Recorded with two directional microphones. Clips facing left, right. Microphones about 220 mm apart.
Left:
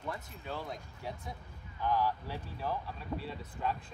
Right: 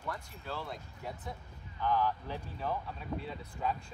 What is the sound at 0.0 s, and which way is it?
Speech, 20° left (ahead or behind).